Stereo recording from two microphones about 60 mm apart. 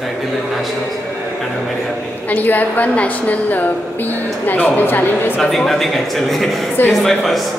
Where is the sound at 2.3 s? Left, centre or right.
Left.